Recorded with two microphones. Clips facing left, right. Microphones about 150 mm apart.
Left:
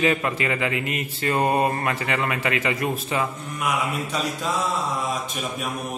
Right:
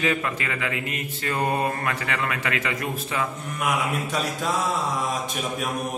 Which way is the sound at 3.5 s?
Centre (ahead or behind).